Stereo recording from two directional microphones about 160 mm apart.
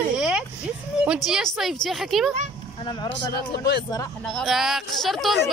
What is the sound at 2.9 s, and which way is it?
Speech, 25° left (ahead or behind).